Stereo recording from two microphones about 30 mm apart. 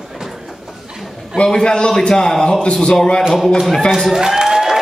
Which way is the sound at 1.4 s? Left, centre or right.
Left.